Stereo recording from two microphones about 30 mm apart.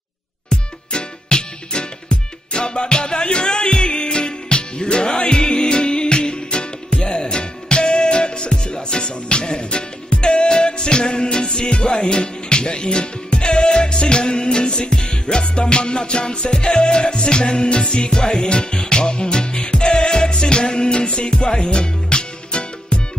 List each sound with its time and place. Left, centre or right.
0.5 s music: left